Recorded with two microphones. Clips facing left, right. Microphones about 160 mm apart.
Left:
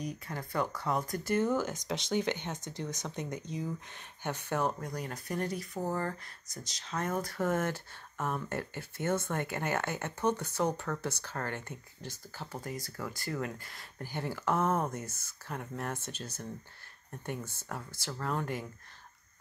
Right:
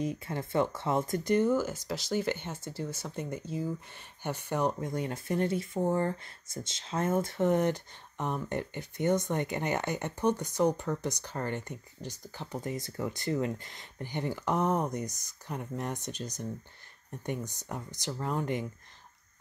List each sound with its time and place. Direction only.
0.0 s speech: 25° right (ahead or behind)